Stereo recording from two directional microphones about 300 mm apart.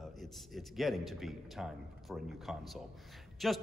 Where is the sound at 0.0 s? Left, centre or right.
Centre.